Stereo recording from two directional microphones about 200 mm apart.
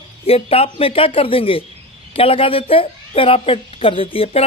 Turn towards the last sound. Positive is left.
turn(degrees=30)  # may be behind; listen again after turning